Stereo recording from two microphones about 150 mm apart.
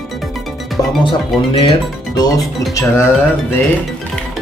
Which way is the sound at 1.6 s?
30° left (ahead or behind).